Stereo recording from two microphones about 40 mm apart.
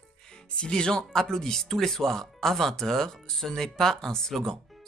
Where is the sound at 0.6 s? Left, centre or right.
Left.